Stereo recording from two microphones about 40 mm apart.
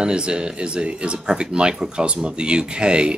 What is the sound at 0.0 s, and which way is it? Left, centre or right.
Speech, right.